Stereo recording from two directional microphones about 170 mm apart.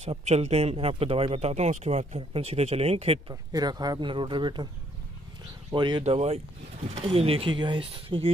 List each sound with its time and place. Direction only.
0.0 s a man's voice: 40° right (ahead or behind)
3.5 s speech: 25° right (ahead or behind)
5.7 s speech: 25° right (ahead or behind)
6.0 s a man's voice: 40° right (ahead or behind)